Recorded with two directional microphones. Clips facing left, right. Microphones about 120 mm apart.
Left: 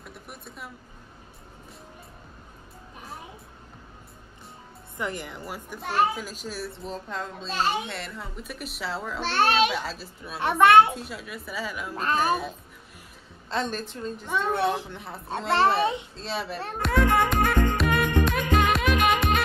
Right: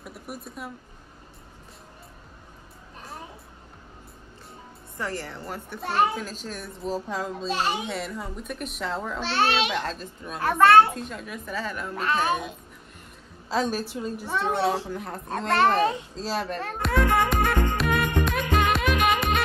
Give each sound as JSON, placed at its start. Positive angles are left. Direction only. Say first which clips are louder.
{"t": 0.0, "sound": "a sound", "louder": "right 5 dB", "side_deg": 0}
{"t": 4.9, "sound": "a woman's voice", "louder": "even", "side_deg": 15}
{"t": 6.8, "sound": "a child's voice", "louder": "right 4 dB", "side_deg": -5}
{"t": 9.2, "sound": "a child's voice", "louder": "left 2 dB", "side_deg": 50}
{"t": 9.7, "sound": "a child's voice", "louder": "right 2 dB", "side_deg": 5}
{"t": 10.4, "sound": "a woman's voice", "louder": "even", "side_deg": 15}
{"t": 11.0, "sound": "a woman's voice", "louder": "right 2 dB", "side_deg": 5}
{"t": 13.5, "sound": "a woman's voice", "louder": "right 3 dB", "side_deg": -5}
{"t": 16.7, "sound": "music", "louder": "left 1 dB", "side_deg": 0}